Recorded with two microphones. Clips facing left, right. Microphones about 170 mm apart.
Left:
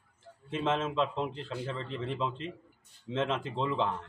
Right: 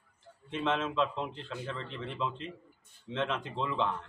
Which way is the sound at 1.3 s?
35° left (ahead or behind).